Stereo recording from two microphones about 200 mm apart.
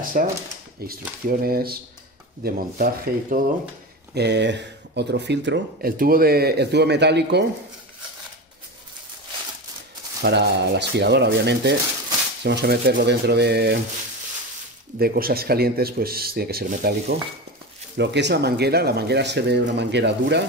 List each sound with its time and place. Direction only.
0.2 s speech: 45° right (ahead or behind)
4.1 s speech: 55° right (ahead or behind)
10.2 s speech: 55° right (ahead or behind)
15.0 s speech: 50° right (ahead or behind)